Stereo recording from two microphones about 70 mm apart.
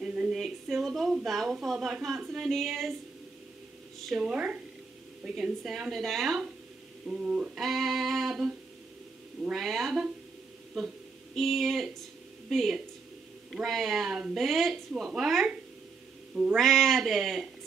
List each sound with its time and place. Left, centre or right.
0.0 s a sound: centre
0.3 s a woman's voice: centre
2.5 s music: centre
4.2 s a sound: centre
5.4 s music: centre
7.1 s a sound: centre
7.5 s music: centre
12.4 s speech: centre
13.6 s music: centre
16.5 s music: centre